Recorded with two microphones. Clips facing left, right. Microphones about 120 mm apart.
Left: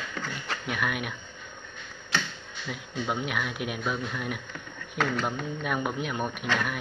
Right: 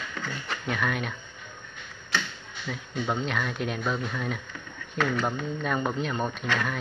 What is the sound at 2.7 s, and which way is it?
Speech, 10° left (ahead or behind).